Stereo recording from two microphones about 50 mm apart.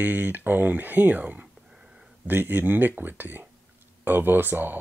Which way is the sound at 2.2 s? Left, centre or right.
Right.